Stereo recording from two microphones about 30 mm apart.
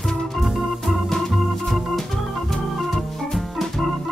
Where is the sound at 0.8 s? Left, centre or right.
Centre.